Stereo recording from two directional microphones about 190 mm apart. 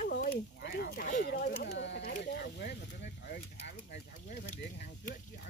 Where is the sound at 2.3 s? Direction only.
60° left (ahead or behind).